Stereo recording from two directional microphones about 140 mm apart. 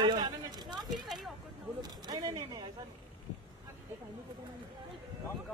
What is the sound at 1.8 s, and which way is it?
Speech, 30° right (ahead or behind).